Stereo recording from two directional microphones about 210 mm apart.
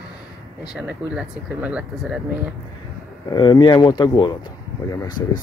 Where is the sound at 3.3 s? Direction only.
20° left (ahead or behind).